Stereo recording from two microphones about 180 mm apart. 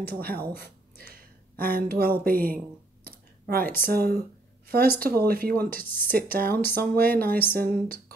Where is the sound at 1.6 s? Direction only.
55° right (ahead or behind).